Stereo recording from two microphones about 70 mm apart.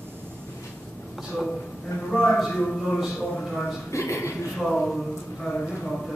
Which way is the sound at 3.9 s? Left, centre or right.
Left.